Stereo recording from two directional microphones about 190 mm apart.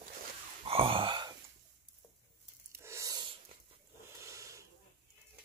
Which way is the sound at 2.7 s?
15° right (ahead or behind).